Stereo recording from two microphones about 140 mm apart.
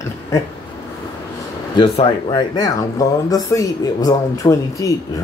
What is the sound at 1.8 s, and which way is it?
Speech, 35° left (ahead or behind).